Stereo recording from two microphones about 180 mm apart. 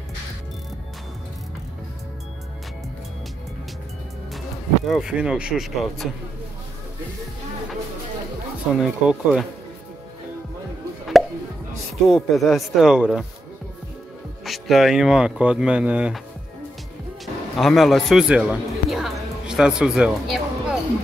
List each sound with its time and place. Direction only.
4.8 s speech: centre (ahead or behind)
8.7 s speech: centre (ahead or behind)
11.1 s a sound: centre (ahead or behind)
12.1 s speech: centre (ahead or behind)
14.4 s speech: centre (ahead or behind)
17.6 s speech: centre (ahead or behind)